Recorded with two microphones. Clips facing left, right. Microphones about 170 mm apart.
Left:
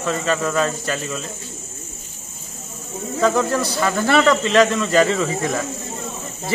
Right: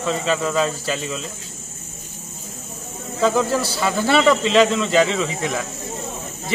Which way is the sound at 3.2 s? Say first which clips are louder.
Even; 5° right (ahead or behind).